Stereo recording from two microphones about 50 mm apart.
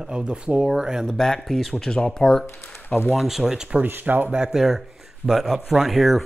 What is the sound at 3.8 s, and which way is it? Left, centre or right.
Speech, right.